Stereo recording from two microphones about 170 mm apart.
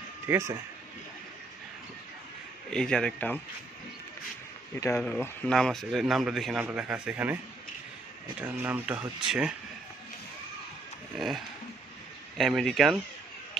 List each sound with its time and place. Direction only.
0.3 s speech: 15° right (ahead or behind)
2.7 s a man's voice: 5° left (ahead or behind)
4.7 s speech: 15° left (ahead or behind)
5.0 s a man's voice: 5° left (ahead or behind)
8.4 s speech: 10° right (ahead or behind)
11.1 s a man's voice: centre (ahead or behind)